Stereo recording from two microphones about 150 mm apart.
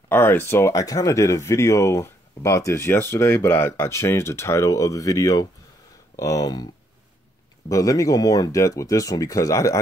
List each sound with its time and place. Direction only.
0.1 s speech: 15° left (ahead or behind)
7.7 s speech: 20° left (ahead or behind)